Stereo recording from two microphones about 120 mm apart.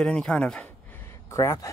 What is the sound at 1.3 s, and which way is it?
Speech, 25° left (ahead or behind).